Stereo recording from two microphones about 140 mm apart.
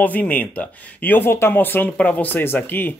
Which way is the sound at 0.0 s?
10° left (ahead or behind).